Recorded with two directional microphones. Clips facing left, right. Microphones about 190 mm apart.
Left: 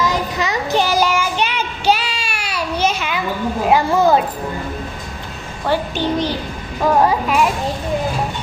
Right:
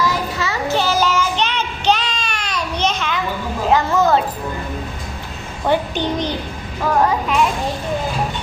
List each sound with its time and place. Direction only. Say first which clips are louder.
0.0 s child singing: left 1 dB; 20° left (ahead or behind)
3.6 s a sound: left 1 dB; 10° left (ahead or behind)
5.7 s a child's voice: even; 20° right (ahead or behind)
7.0 s speech: even; 10° left (ahead or behind)